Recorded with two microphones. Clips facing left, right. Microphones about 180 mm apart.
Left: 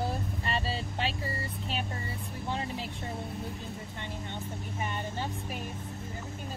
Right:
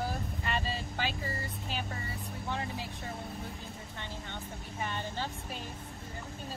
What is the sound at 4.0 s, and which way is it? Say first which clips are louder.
Vehicle: left 1 dB; 15° left (ahead or behind).